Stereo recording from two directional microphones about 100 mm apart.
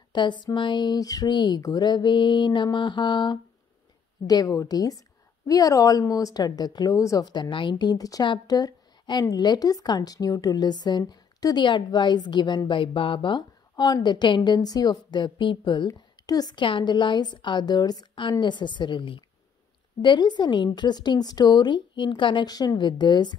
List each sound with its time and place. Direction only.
0.1 s a woman's voice: 50° left (ahead or behind)
4.3 s a woman's voice: 40° left (ahead or behind)
15.9 s a woman's voice: 40° left (ahead or behind)